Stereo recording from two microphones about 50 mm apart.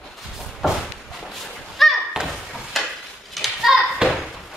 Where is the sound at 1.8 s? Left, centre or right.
Centre.